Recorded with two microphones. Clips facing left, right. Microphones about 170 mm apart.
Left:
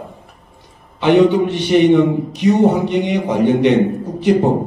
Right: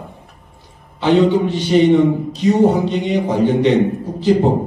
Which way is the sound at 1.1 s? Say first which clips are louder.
Left 2 dB; 65° left (ahead or behind).